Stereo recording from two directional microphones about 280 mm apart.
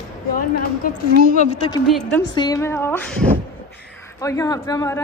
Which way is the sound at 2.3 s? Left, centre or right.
Centre.